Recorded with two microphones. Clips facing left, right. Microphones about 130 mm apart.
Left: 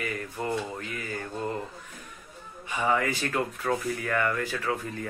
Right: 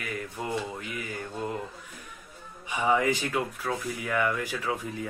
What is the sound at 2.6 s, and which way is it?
A man's voice, 15° right (ahead or behind).